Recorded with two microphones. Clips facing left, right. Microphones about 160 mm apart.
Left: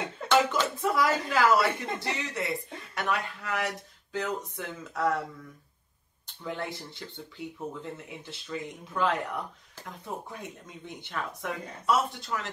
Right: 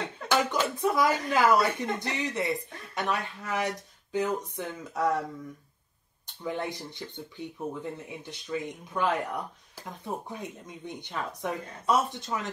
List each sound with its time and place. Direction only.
0.5 s speech: 20° right (ahead or behind)
6.4 s speech: 20° right (ahead or behind)